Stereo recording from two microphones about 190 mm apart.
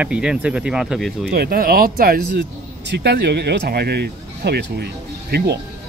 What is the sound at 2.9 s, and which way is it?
Speech, 60° right (ahead or behind).